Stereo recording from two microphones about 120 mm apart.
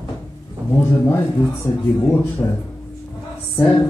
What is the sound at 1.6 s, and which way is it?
Speech, 15° left (ahead or behind).